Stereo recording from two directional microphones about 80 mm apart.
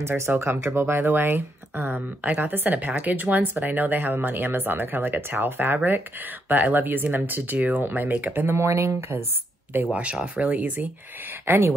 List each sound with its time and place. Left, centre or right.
0.0 s speech: right
9.8 s speech: centre